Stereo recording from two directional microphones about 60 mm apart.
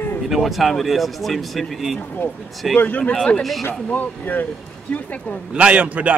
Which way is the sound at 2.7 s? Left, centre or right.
Left.